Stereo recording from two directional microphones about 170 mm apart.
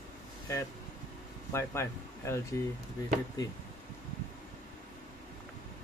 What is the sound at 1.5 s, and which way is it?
Speech, 15° left (ahead or behind).